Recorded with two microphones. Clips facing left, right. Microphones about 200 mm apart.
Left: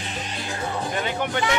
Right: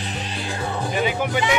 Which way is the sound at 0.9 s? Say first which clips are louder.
Right 6 dB; 10° right (ahead or behind).